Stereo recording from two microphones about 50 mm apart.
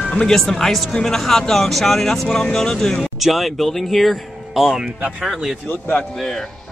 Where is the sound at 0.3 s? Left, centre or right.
Centre.